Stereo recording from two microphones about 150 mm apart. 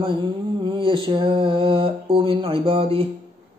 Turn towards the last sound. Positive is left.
turn(degrees=-40)  # may be behind; listen again after turning